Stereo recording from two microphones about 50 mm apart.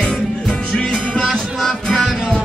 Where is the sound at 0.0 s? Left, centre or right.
Centre.